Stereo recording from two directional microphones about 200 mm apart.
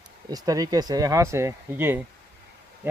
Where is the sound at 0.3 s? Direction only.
20° right (ahead or behind).